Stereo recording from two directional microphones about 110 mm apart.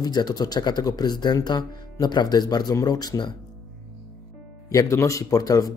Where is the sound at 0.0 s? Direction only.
40° left (ahead or behind).